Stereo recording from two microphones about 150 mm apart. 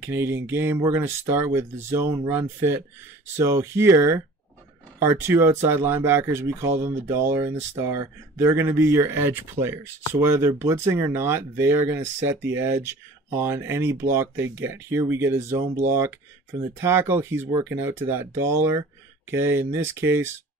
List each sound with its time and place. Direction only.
0.0 s speech: 15° right (ahead or behind)